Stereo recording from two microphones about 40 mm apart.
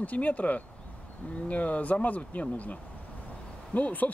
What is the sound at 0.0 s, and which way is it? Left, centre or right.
Speech, left.